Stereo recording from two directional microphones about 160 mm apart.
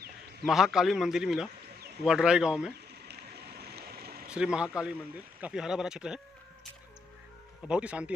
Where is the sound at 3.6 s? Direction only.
85° right.